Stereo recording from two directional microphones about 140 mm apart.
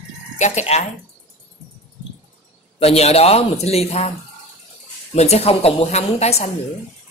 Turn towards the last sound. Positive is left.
turn(degrees=50)  # may be behind; listen again after turning